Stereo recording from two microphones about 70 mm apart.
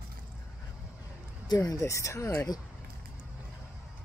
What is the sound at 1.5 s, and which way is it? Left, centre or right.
Speech, left.